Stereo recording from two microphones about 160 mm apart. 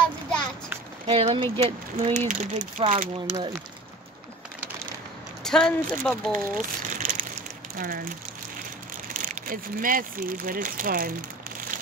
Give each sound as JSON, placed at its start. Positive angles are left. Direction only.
{"t": 1.0, "sound": "speech", "side_deg": -35}
{"t": 2.1, "sound": "speech", "side_deg": -50}
{"t": 5.4, "sound": "speech", "side_deg": 5}
{"t": 6.3, "sound": "a sound", "side_deg": -50}
{"t": 7.7, "sound": "speech", "side_deg": -60}
{"t": 9.1, "sound": "speech", "side_deg": -55}